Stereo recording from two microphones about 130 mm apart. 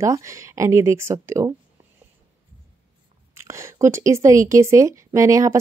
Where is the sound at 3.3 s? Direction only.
20° right (ahead or behind).